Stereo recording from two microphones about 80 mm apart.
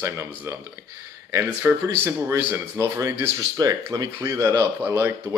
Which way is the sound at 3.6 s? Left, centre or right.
Right.